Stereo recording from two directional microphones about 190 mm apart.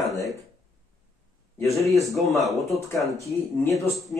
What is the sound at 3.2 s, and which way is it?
Speech, 15° left (ahead or behind).